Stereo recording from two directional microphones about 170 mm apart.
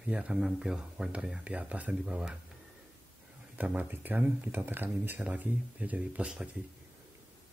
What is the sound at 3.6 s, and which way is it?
Speech, 10° right (ahead or behind).